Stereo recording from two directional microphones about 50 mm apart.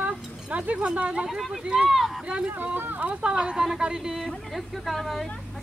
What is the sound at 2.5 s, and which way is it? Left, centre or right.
Speech, right.